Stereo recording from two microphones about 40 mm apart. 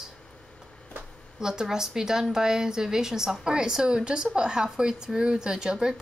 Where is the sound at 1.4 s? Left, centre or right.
Centre.